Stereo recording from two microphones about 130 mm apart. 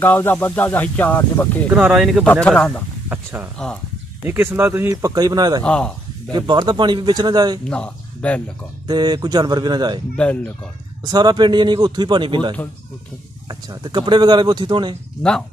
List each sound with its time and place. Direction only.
0.0 s speech: 15° left (ahead or behind)
1.7 s speech: 5° right (ahead or behind)
2.4 s speech: 5° left (ahead or behind)
3.1 s speech: 15° right (ahead or behind)
4.8 s speech: 30° right (ahead or behind)
5.6 s speech: 10° left (ahead or behind)
6.3 s a man's voice: 35° right (ahead or behind)
7.7 s speech: 10° left (ahead or behind)
8.8 s a man's voice: 35° right (ahead or behind)
10.1 s speech: 10° left (ahead or behind)
11.1 s a man's voice: 35° right (ahead or behind)